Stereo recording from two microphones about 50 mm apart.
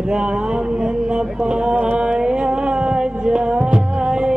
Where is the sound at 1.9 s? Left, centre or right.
Centre.